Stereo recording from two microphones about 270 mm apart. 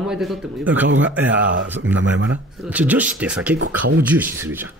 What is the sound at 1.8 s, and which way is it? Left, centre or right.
Speech, right.